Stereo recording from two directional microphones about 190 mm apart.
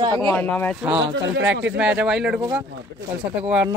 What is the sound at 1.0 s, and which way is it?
Speech, 75° right (ahead or behind).